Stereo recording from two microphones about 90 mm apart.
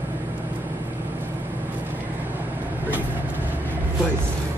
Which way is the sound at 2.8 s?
20° right (ahead or behind).